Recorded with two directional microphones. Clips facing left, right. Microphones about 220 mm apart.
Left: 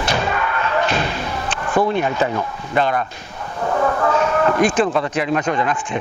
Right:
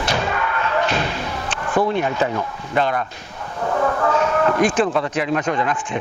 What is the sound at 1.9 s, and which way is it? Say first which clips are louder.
A man's voice: left 1 dB; 15° left (ahead or behind).